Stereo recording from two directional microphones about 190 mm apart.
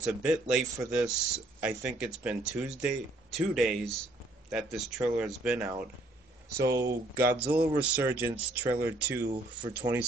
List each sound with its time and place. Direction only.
0.0 s speech: 5° right (ahead or behind)
9.3 s speech: 25° right (ahead or behind)
9.8 s speech: 15° right (ahead or behind)